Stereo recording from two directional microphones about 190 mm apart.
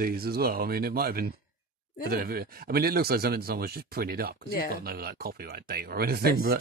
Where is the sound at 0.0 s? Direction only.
50° right (ahead or behind).